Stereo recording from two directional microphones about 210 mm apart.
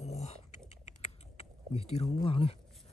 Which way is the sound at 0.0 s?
30° left (ahead or behind).